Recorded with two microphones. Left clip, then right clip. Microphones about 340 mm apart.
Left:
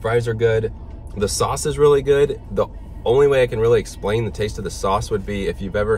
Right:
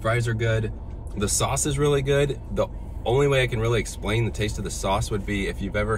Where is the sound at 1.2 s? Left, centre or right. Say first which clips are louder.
Left 5 dB; centre.